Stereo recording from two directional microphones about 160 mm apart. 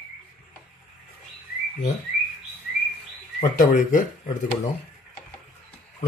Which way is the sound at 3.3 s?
55° left (ahead or behind).